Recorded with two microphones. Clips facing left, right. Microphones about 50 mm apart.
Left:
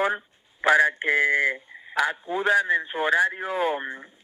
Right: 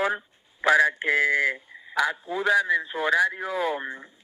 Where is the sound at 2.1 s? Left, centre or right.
Left.